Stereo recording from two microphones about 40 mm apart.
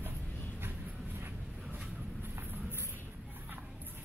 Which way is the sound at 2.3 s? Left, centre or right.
Right.